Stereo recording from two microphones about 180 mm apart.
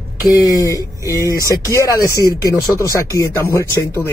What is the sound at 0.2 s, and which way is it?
Speech, 20° left (ahead or behind).